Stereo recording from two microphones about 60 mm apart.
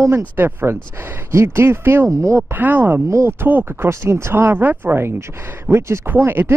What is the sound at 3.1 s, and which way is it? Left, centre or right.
Speech, right.